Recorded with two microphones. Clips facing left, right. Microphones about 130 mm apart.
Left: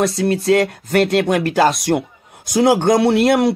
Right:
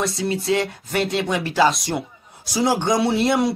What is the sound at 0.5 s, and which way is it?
A man's voice, 60° left (ahead or behind).